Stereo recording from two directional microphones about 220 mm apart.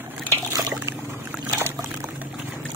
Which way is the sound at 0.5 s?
15° right (ahead or behind).